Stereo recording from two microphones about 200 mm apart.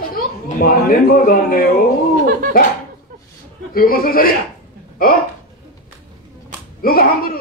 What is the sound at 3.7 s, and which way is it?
Speech, 45° left (ahead or behind).